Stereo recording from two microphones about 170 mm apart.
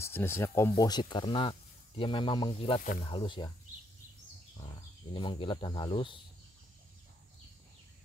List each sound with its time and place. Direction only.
0.0 s speech: 15° left (ahead or behind)
5.1 s speech: 30° left (ahead or behind)